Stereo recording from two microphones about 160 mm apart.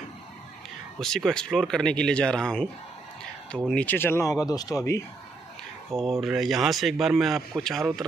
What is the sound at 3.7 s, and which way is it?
Speech, 10° left (ahead or behind).